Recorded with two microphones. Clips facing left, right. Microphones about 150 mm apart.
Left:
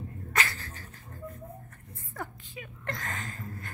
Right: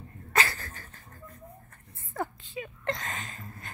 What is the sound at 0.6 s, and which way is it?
Dog, 50° right (ahead or behind).